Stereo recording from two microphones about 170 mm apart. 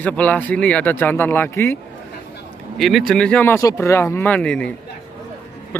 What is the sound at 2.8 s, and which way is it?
A man's voice, centre (ahead or behind).